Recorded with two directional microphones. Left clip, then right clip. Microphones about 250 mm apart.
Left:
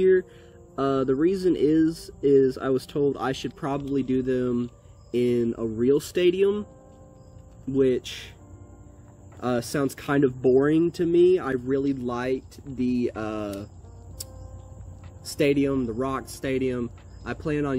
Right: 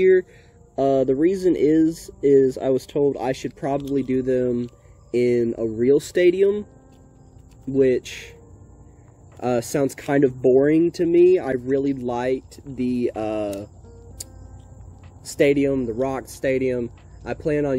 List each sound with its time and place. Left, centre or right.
0.7 s speech: centre
7.7 s speech: centre
9.4 s speech: centre
15.2 s speech: centre